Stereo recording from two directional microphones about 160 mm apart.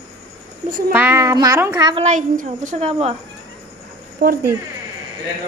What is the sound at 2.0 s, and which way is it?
A woman's voice, 50° right (ahead or behind).